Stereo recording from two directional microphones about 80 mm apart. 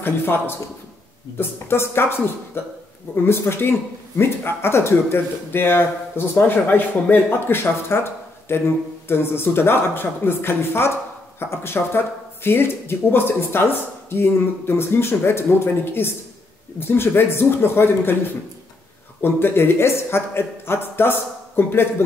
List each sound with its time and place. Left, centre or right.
0.0 s speech: left
19.2 s speech: left